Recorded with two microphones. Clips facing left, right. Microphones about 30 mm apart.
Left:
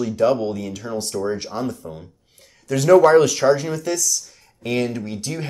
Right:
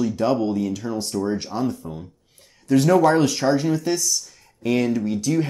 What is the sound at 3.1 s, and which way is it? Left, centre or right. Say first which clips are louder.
Speech: left 4 dB; left.